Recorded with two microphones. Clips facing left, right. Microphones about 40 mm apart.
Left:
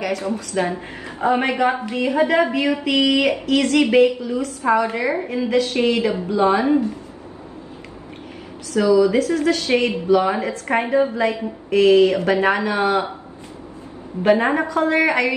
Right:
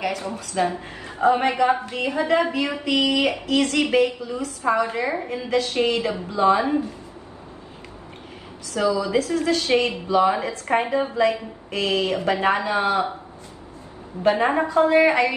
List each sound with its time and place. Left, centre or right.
0.0 s a woman's voice: left
8.9 s a woman's voice: left
14.2 s a woman's voice: left